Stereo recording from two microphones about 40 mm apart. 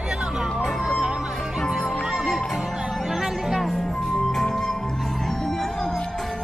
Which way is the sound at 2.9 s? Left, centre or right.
Centre.